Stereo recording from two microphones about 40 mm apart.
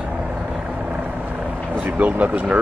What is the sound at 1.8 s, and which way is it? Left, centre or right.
Vehicle, right.